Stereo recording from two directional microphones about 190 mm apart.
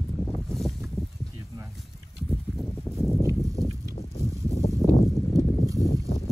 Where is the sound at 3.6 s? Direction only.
30° left (ahead or behind).